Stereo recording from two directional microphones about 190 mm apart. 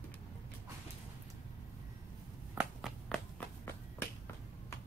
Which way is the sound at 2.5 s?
Centre (ahead or behind).